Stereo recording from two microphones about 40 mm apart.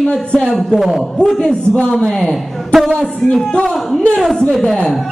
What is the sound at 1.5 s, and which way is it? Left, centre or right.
Speech, centre.